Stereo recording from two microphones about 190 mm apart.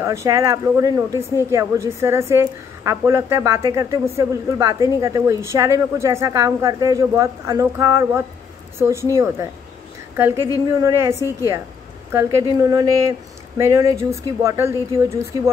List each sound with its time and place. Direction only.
0.0 s a woman's voice: 15° right (ahead or behind)